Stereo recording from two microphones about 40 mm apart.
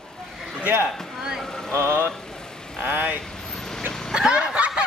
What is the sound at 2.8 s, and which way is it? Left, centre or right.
Speech, right.